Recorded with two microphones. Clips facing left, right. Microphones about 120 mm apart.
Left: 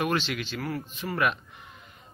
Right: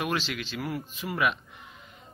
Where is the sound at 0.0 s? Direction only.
Centre (ahead or behind).